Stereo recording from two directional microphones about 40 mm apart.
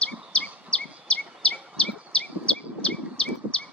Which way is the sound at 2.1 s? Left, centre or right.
Left.